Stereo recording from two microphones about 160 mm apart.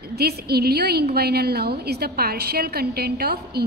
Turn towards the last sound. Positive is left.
turn(degrees=-80)